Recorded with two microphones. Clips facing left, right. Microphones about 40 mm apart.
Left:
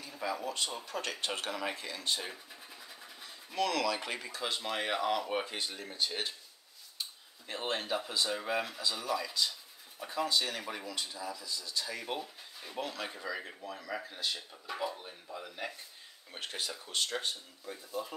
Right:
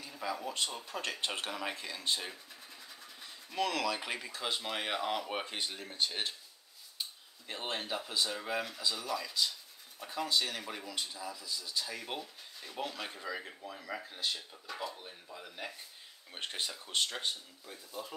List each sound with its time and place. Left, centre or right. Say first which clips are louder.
0.0 s speech: left 2 dB; centre
2.3 s vehicle: left 2 dB; centre
3.5 s speech: left 2 dB; centre
14.7 s speech: left 4 dB; centre
16.4 s speech: even; centre
17.6 s speech: left 5 dB; centre